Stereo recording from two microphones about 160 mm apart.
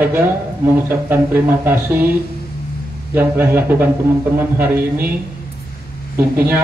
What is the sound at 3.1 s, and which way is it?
A man's voice, 15° right (ahead or behind).